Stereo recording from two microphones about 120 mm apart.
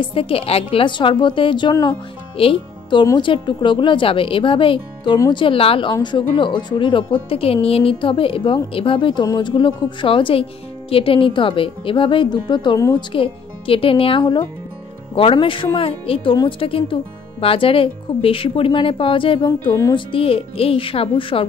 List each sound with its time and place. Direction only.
0.0 s speech: 50° left (ahead or behind)
2.3 s speech: 50° left (ahead or behind)